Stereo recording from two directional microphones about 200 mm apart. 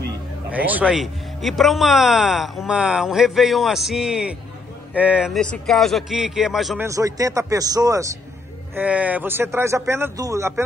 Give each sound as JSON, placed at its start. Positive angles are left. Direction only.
{"t": 0.5, "sound": "a man's voice", "side_deg": -5}
{"t": 6.8, "sound": "a man's voice", "side_deg": -15}
{"t": 8.7, "sound": "a man's voice", "side_deg": -5}